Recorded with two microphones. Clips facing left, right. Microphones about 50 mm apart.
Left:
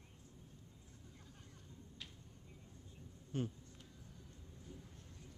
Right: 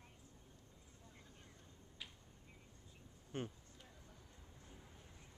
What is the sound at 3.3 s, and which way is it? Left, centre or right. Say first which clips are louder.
Speech: left 4 dB; right.